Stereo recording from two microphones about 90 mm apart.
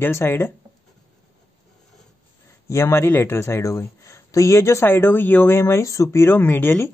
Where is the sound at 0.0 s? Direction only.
25° left (ahead or behind).